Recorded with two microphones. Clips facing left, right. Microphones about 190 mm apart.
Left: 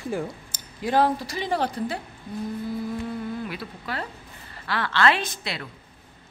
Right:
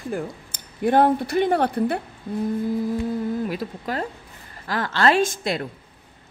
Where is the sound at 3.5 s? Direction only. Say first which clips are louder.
Right 6 dB; 40° right (ahead or behind).